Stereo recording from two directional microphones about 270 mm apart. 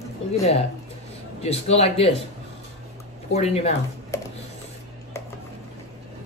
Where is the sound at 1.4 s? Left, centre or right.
Left.